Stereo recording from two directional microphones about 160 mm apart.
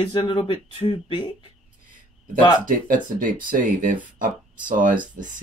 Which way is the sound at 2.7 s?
55° right (ahead or behind).